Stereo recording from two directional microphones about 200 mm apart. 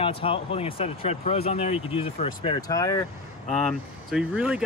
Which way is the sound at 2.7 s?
15° left (ahead or behind).